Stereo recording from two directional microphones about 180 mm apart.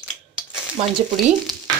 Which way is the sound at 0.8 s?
35° right (ahead or behind).